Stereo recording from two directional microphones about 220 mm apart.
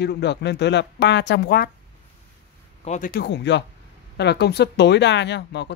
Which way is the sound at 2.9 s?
40° left (ahead or behind).